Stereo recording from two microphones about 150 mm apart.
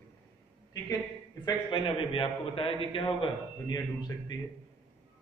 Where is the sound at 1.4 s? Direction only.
35° left (ahead or behind).